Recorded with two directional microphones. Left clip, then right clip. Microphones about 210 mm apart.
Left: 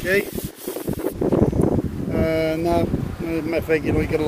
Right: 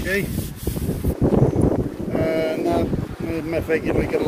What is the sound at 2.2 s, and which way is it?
Speech, 10° left (ahead or behind).